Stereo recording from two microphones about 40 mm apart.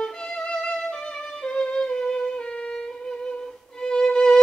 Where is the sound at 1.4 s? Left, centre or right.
Left.